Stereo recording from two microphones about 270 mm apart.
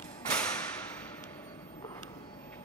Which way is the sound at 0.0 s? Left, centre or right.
Centre.